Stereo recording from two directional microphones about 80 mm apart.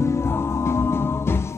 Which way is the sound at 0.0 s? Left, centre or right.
Left.